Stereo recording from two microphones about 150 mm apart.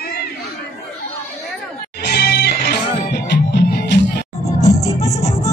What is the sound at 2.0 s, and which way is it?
Music, 90° left.